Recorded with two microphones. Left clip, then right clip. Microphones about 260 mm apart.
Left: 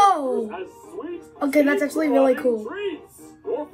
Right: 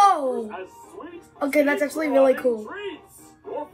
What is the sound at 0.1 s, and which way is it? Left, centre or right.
Music, centre.